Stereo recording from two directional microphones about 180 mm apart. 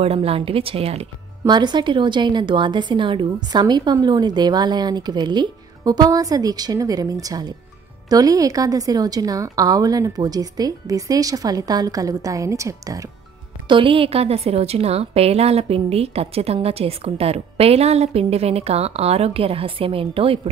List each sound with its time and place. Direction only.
0.0 s a woman's voice: 35° right (ahead or behind)
13.7 s a woman's voice: 30° right (ahead or behind)